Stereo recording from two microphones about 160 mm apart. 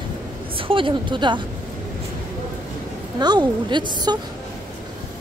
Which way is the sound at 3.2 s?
25° right (ahead or behind).